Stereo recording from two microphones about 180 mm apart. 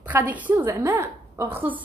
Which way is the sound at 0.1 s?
10° right (ahead or behind).